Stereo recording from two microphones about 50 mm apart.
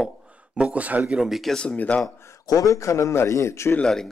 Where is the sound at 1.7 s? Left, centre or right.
Left.